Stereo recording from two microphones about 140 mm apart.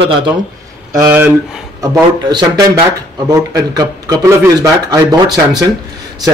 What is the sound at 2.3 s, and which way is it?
A man's voice, 30° right (ahead or behind).